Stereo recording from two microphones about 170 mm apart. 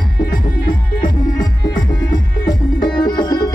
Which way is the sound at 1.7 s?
20° left (ahead or behind).